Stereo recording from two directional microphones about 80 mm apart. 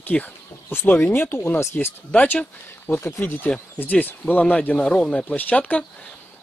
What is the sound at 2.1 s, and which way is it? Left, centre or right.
Speech, centre.